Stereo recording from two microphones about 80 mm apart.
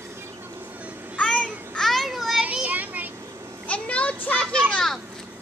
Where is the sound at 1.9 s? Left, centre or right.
Centre.